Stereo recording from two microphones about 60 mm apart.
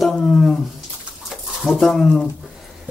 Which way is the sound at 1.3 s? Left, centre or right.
Centre.